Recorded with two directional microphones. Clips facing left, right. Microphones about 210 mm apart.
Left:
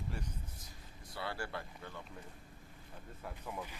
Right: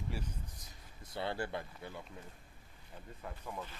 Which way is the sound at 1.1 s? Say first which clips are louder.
Right 4 dB; 20° right (ahead or behind).